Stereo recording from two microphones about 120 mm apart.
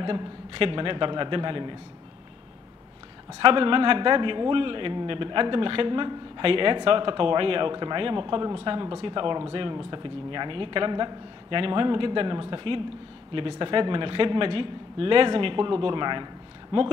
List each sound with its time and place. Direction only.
0.0 s a man's voice: 45° right (ahead or behind)
3.3 s a man's voice: 45° right (ahead or behind)
16.7 s a man's voice: 55° right (ahead or behind)